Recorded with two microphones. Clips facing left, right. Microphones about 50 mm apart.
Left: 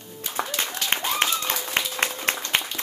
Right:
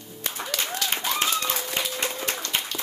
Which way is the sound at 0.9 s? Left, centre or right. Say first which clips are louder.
Left 3 dB; left.